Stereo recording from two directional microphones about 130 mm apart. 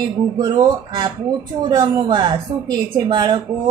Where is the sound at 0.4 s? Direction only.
35° right (ahead or behind).